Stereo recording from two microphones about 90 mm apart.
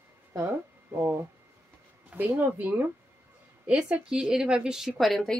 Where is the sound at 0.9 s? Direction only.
25° right (ahead or behind); by 5.4 s centre (ahead or behind).